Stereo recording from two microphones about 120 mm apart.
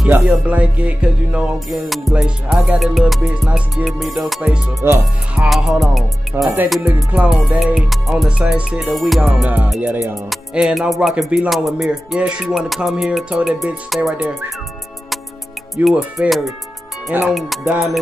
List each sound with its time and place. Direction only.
0.0 s music: 10° right (ahead or behind)
4.8 s speech: 20° right (ahead or behind)
5.4 s music: 5° right (ahead or behind)
6.3 s speech: 20° right (ahead or behind)
7.1 s music: 5° right (ahead or behind)
15.7 s music: centre (ahead or behind)